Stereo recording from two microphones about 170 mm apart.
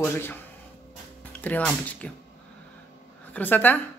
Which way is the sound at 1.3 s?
10° left (ahead or behind).